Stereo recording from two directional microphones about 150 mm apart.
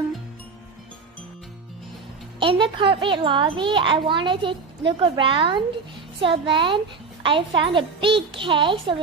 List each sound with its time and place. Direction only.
2.4 s a child's voice: 35° right (ahead or behind)